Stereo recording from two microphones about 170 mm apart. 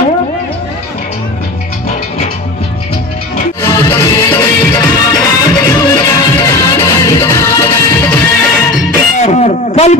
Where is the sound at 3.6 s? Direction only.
20° left (ahead or behind).